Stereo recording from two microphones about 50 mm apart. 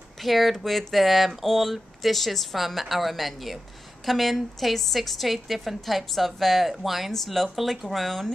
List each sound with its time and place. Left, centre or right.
0.2 s speech: centre